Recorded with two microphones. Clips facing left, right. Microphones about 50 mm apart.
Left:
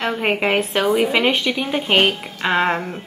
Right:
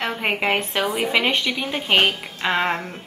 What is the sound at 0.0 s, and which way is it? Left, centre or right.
A woman's voice, centre.